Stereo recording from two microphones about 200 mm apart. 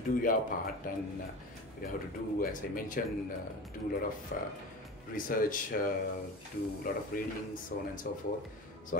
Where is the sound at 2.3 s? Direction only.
45° left (ahead or behind).